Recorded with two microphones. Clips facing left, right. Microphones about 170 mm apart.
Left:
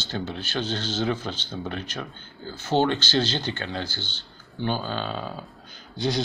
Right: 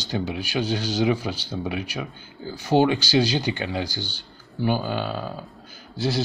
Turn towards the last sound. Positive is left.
turn(degrees=-5)  # may be behind; listen again after turning